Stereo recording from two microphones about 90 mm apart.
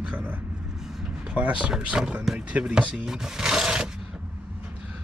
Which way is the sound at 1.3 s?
10° right (ahead or behind).